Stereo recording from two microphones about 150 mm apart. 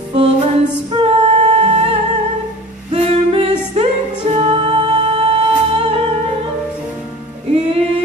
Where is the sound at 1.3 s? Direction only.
45° right (ahead or behind).